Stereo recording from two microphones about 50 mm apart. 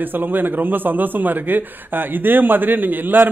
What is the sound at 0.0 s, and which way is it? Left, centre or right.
A man's voice, right.